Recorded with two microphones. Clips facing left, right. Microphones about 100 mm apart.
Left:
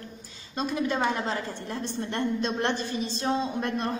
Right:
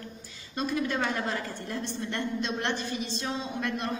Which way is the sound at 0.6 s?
25° left (ahead or behind).